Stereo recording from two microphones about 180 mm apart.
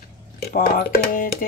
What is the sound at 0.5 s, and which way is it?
Speech, 50° left (ahead or behind).